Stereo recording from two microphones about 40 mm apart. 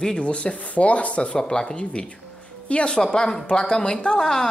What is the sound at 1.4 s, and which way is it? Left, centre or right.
A woman's voice, centre.